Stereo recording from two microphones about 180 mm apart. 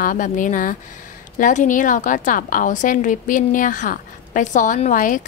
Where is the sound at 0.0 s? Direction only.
45° left (ahead or behind).